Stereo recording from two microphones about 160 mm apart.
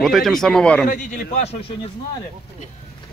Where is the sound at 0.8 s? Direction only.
55° left (ahead or behind).